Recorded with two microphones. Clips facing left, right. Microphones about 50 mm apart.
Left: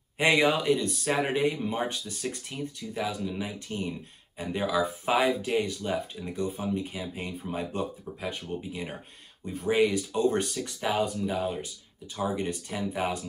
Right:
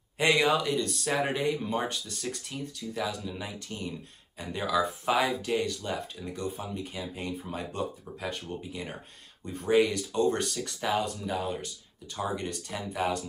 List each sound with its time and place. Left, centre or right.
0.2 s speech: centre